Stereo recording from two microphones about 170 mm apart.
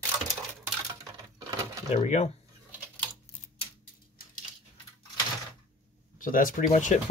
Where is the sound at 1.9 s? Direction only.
40° left (ahead or behind).